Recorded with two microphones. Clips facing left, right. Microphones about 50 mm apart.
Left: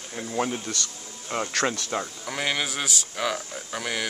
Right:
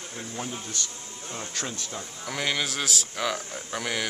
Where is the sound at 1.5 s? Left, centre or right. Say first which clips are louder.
Left 10 dB; left.